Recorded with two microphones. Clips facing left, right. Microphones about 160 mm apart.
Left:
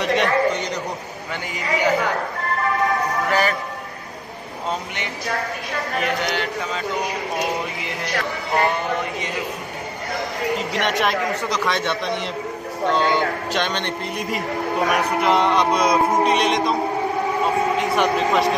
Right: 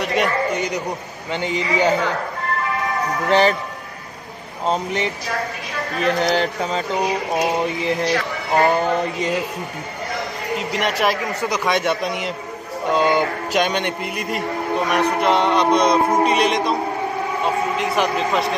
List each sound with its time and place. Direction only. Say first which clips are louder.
0.0 s a man's voice: left 2 dB; 5° right (ahead or behind)
1.3 s a man's voice: right 4 dB; 25° right (ahead or behind)
3.3 s a man's voice: right 6 dB; 25° right (ahead or behind)
4.6 s a man's voice: right 7 dB; 30° right (ahead or behind)
8.7 s a man's voice: right 5 dB; 35° right (ahead or behind)
10.7 s speech: right 4 dB; 5° right (ahead or behind)
12.9 s music: right 3 dB; 10° right (ahead or behind)
14.9 s speech: right 2 dB; centre (ahead or behind)
17.7 s speech: left 1 dB; centre (ahead or behind)